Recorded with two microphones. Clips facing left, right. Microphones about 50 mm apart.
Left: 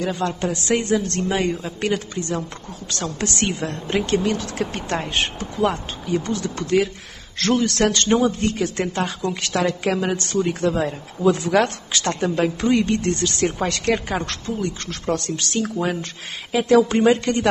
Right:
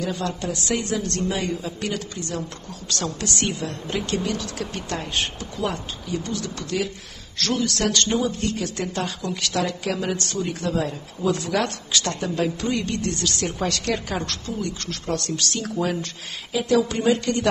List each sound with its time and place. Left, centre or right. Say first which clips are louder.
0.0 s a man's voice: left 4 dB; left